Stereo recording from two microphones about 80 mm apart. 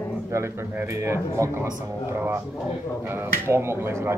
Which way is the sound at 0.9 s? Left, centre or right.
Right.